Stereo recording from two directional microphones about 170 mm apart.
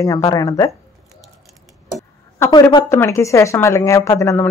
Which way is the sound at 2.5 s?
25° left (ahead or behind).